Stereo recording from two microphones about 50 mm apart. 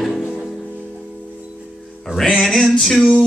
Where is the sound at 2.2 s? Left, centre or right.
Centre.